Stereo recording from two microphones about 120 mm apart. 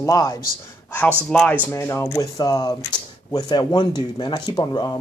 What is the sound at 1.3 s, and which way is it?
Speech, 10° left (ahead or behind).